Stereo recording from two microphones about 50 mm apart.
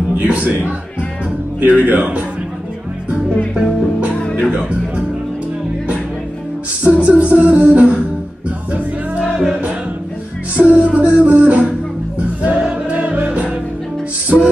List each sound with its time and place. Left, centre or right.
0.2 s a man's voice: right
1.6 s speech: right
4.1 s music: left
4.5 s music: right
6.8 s beatboxing: right
10.5 s music: right
14.3 s music: centre